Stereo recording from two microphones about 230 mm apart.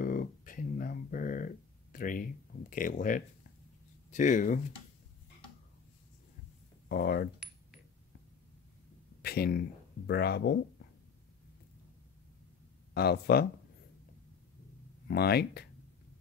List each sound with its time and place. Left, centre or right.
0.0 s music: left
2.7 s speech: left
6.9 s speech: left
9.2 s speech: left
12.9 s speech: left
15.0 s speech: left